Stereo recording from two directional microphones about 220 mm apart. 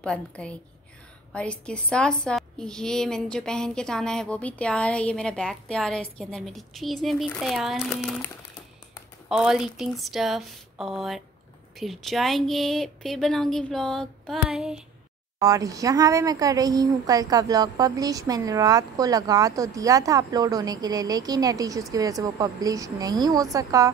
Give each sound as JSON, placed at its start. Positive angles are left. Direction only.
{"t": 0.0, "sound": "a woman's voice", "side_deg": 5}
{"t": 9.3, "sound": "a woman's voice", "side_deg": 0}
{"t": 15.3, "sound": "a woman's voice", "side_deg": -15}